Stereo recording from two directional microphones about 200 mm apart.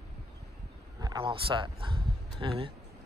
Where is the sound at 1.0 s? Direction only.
20° right (ahead or behind).